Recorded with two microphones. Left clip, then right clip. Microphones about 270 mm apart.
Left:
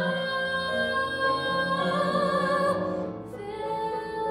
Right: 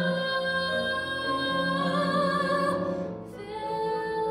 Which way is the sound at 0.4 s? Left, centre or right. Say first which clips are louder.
Even; left.